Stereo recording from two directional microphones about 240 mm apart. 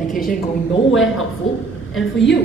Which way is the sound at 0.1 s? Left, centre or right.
Left.